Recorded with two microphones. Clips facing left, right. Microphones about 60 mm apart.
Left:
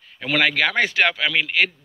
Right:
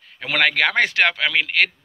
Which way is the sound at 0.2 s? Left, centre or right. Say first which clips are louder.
Right 1 dB; right.